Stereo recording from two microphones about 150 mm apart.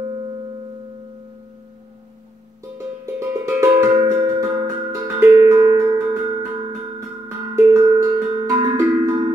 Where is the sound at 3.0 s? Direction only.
20° right (ahead or behind).